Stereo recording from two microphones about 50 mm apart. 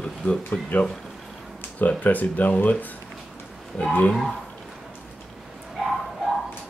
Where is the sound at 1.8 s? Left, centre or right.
Left.